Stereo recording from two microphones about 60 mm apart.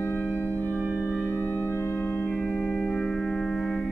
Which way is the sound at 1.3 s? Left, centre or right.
Left.